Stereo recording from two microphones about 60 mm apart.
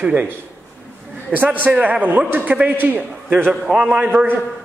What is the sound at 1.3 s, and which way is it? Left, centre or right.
A man's voice, right.